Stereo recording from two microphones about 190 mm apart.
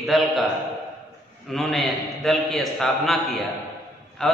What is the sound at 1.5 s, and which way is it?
A man's voice, centre (ahead or behind).